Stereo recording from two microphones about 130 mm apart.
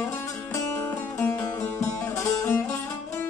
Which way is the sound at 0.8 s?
15° left (ahead or behind).